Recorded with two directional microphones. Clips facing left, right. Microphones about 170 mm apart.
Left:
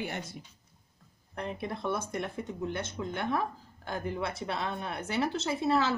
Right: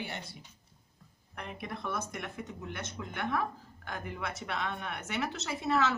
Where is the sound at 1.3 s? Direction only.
30° left (ahead or behind).